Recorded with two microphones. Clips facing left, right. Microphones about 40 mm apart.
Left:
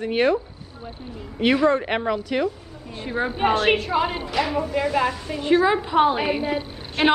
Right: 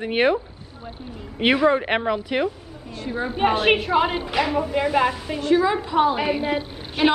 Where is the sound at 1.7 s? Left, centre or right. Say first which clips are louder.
Right 1 dB; centre.